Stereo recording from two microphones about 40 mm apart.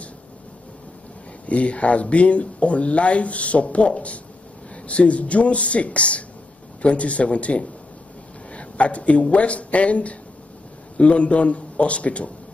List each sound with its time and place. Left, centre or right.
1.4 s speech: left